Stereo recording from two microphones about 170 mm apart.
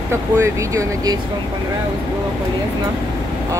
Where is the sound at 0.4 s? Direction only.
15° right (ahead or behind).